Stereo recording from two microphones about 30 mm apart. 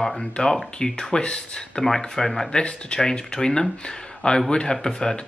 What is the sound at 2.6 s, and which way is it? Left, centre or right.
Speech, left.